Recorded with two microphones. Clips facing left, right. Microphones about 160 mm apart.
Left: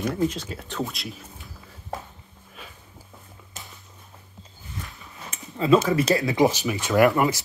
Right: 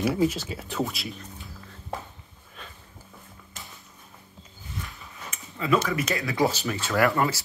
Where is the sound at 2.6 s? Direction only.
5° left (ahead or behind).